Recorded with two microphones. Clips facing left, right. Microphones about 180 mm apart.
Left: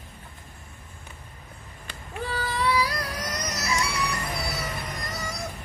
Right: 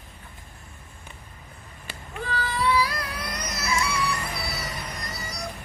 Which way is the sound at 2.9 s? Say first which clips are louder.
Left 1 dB; 40° left (ahead or behind).